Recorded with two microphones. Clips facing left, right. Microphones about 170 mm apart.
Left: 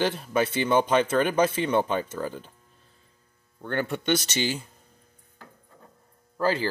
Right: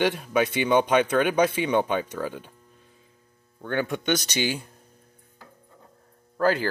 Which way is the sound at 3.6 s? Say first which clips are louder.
Right 1 dB; 10° right (ahead or behind).